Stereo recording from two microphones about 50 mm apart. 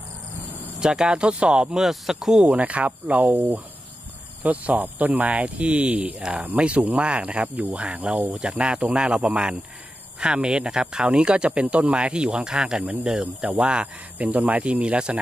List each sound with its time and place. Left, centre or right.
0.7 s speech: centre
2.4 s speech: right; by 13.5 s centre
13.6 s speech: right
14.1 s speech: right